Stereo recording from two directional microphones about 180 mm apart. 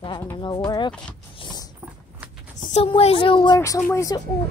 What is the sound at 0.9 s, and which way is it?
Speech, 5° left (ahead or behind).